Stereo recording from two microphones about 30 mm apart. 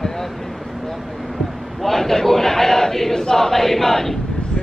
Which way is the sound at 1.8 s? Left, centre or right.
Centre.